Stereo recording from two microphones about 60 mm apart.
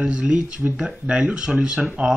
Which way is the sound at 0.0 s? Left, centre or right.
Centre.